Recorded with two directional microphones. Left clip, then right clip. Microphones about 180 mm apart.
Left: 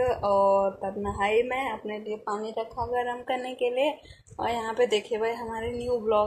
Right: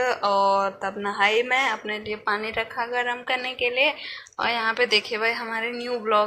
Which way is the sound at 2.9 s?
25° left (ahead or behind).